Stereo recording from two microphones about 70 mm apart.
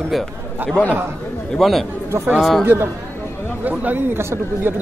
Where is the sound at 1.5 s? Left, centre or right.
Centre.